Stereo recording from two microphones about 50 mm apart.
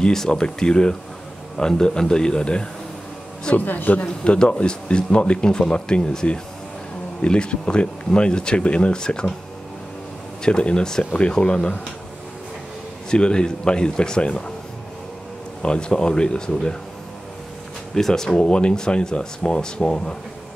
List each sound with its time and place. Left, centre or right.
0.0 s speech: centre
3.5 s speech: left; by 9.3 s centre
10.4 s speech: centre
13.1 s speech: centre
15.6 s speech: centre
17.9 s speech: centre